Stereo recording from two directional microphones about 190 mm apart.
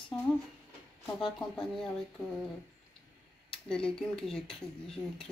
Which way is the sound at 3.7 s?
5° left (ahead or behind).